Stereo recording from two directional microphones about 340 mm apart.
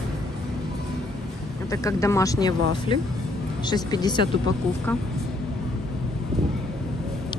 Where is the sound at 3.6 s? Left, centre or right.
Centre.